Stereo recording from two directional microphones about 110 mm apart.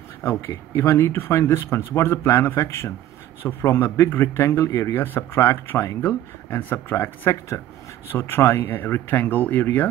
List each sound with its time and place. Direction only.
0.2 s a man's voice: 25° left (ahead or behind)